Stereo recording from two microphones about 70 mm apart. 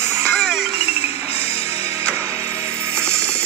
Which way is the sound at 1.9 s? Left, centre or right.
Right.